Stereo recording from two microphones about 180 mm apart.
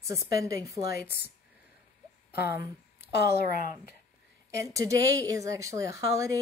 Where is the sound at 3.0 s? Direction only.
65° left (ahead or behind).